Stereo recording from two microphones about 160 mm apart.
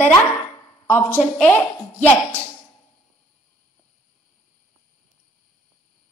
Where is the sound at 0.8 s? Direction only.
10° left (ahead or behind).